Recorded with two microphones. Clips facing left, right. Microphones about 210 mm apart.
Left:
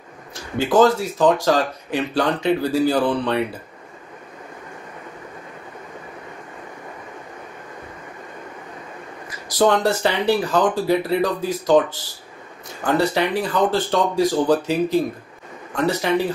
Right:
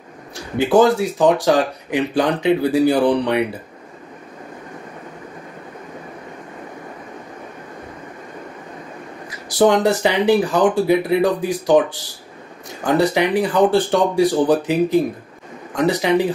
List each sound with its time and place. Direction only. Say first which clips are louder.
0.6 s speech: right 2 dB; 15° right (ahead or behind)
9.6 s speech: right 3 dB; 15° right (ahead or behind)